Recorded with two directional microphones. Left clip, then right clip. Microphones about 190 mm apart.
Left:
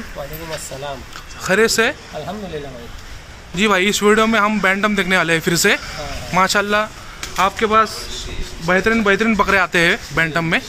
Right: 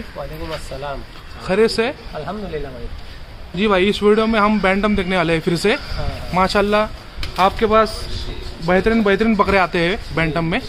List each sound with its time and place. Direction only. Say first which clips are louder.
1.4 s speech: left 2 dB; centre (ahead or behind)
3.5 s speech: left 1 dB; 5° left (ahead or behind)
7.3 s a man's voice: even; 15° right (ahead or behind); by 10.6 s centre (ahead or behind)